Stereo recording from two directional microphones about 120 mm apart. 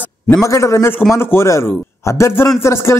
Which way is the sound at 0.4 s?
25° left (ahead or behind).